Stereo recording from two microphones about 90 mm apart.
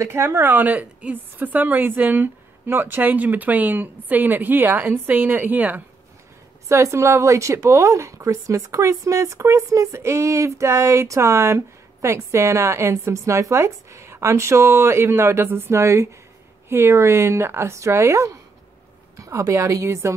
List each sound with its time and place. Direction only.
0.0 s a woman's voice: 30° right (ahead or behind)
6.7 s a woman's voice: 35° right (ahead or behind)